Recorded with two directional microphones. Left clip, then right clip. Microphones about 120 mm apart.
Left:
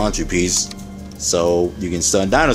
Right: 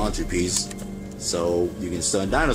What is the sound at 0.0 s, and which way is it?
Speech, 35° left (ahead or behind).